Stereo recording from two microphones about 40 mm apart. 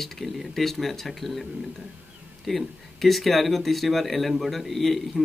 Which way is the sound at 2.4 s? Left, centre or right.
Centre.